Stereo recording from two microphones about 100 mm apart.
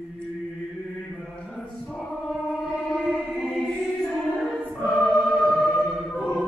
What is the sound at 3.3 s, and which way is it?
Choir, 5° left (ahead or behind).